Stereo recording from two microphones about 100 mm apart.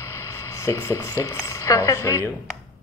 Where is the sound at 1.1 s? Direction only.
35° left (ahead or behind).